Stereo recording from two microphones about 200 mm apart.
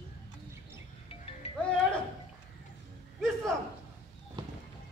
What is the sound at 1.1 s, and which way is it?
Music, 30° left (ahead or behind).